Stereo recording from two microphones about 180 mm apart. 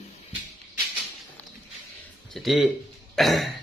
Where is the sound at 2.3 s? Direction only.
Centre (ahead or behind).